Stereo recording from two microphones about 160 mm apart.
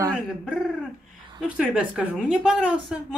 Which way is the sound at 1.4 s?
5° right (ahead or behind).